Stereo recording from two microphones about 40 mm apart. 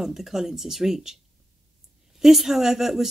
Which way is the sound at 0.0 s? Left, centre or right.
Centre.